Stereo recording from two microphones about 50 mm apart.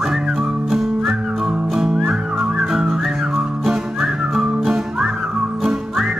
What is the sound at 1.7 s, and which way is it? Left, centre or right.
Whistling, centre.